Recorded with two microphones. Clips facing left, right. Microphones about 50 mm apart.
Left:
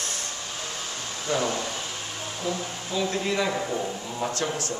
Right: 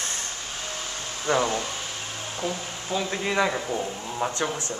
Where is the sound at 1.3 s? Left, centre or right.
Right.